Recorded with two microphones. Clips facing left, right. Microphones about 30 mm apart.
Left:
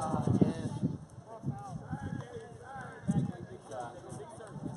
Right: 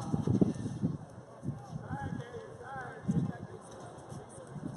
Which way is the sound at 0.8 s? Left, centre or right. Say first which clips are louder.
Even; centre.